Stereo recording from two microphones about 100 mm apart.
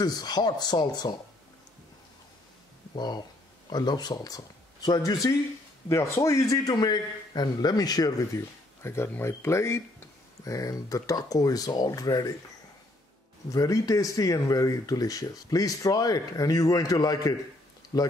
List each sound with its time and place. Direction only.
0.0 s speech: 45° left (ahead or behind)
3.0 s a man's voice: 45° left (ahead or behind)
5.9 s a man's voice: 30° left (ahead or behind)
13.5 s a man's voice: 35° left (ahead or behind)